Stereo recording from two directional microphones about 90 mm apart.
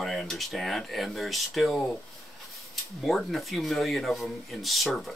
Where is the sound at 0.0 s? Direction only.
5° left (ahead or behind).